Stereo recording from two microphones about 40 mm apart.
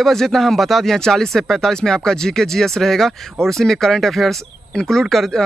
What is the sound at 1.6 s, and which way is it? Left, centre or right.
Speech, centre.